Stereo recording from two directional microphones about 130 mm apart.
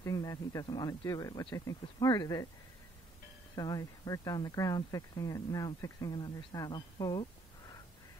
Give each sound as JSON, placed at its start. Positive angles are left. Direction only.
{"t": 0.0, "sound": "speech", "side_deg": 25}
{"t": 3.5, "sound": "speech", "side_deg": 30}